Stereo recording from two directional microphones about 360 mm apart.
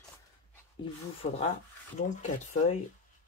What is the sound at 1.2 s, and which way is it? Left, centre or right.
Speech, left.